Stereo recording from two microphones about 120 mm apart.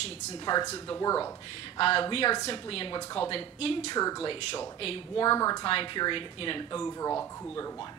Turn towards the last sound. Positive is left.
turn(degrees=25)  # may be behind; listen again after turning